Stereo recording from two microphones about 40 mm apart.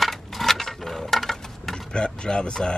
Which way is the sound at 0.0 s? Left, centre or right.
Centre.